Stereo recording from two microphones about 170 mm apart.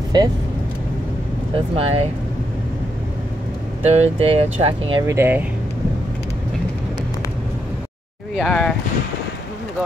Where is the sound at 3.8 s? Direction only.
40° right (ahead or behind).